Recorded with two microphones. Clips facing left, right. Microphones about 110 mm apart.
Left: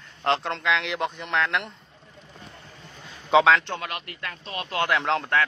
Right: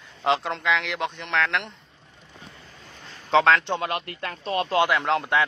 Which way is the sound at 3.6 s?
25° right (ahead or behind).